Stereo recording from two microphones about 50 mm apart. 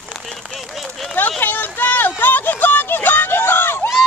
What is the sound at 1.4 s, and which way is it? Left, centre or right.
Speech, left.